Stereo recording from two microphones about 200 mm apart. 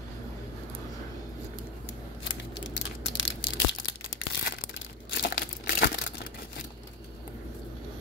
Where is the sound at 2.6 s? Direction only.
65° left (ahead or behind).